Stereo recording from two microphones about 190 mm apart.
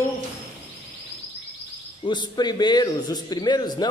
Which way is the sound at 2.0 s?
20° left (ahead or behind).